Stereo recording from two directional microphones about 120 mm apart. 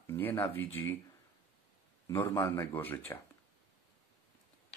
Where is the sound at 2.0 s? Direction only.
20° left (ahead or behind).